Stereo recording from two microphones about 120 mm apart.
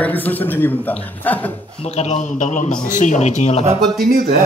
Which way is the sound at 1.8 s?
60° left (ahead or behind).